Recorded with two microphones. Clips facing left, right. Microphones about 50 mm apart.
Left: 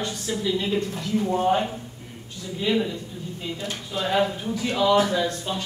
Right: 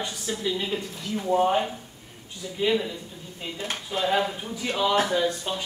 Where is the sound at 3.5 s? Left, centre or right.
Right.